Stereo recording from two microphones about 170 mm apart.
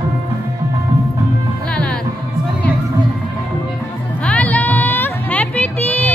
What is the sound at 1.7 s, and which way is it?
Music, 5° left (ahead or behind).